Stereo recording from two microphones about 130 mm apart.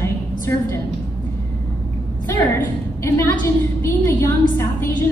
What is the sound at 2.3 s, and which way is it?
A woman's voice, 20° left (ahead or behind).